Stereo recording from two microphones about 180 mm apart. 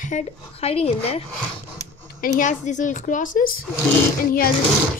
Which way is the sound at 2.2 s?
45° left (ahead or behind).